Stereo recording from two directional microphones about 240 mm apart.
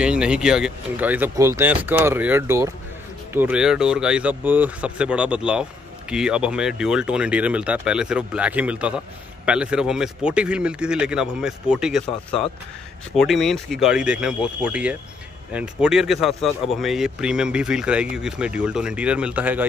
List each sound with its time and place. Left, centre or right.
0.0 s speech: centre